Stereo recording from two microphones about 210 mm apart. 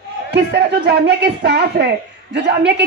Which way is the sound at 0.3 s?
50° right (ahead or behind).